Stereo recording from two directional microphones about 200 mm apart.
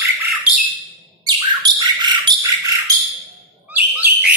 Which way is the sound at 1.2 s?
20° right (ahead or behind).